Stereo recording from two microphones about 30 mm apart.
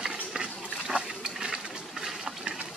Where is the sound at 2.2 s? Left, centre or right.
Right.